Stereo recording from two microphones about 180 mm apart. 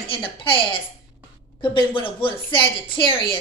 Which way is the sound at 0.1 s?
30° left (ahead or behind).